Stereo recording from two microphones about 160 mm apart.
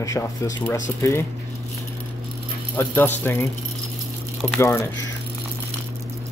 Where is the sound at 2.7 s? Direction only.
10° left (ahead or behind).